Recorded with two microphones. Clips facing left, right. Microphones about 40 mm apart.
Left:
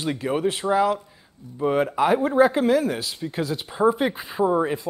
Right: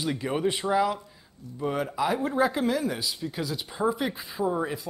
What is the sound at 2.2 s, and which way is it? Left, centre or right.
Speech, centre.